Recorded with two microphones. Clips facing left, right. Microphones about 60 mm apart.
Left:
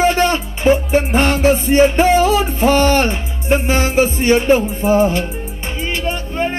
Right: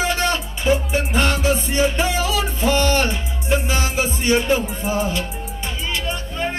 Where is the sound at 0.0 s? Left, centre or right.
Left.